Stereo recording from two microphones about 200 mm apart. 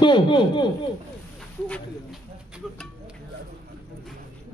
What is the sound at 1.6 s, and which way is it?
Speech, 5° left (ahead or behind).